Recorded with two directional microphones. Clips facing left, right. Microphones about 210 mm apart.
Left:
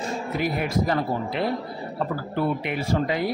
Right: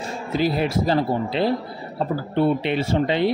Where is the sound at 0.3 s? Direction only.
30° right (ahead or behind).